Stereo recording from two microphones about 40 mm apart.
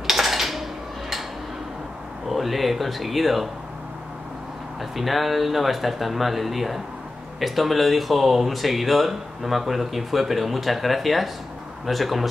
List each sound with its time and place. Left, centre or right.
0.0 s a sound: centre
2.2 s speech: centre
4.9 s speech: centre